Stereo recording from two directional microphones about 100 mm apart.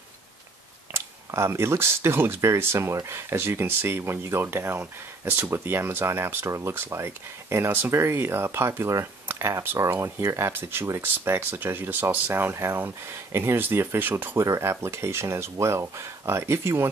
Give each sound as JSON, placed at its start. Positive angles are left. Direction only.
{"t": 0.9, "sound": "speech", "side_deg": -25}